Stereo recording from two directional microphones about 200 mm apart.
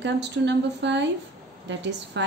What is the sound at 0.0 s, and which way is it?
A woman's voice, 60° right (ahead or behind).